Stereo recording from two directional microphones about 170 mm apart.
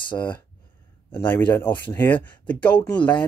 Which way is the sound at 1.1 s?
10° left (ahead or behind).